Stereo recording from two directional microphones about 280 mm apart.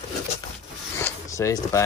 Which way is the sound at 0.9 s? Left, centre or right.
Centre.